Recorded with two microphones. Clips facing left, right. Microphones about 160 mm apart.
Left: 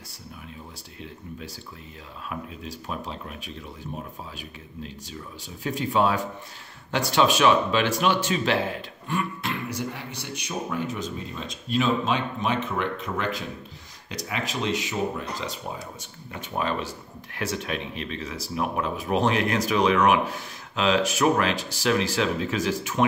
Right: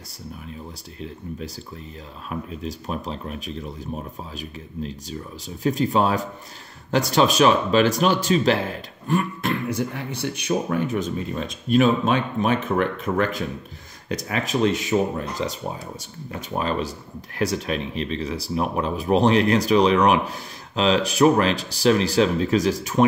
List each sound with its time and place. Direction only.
2.2 s speech: 35° right (ahead or behind)
5.6 s speech: 40° right (ahead or behind)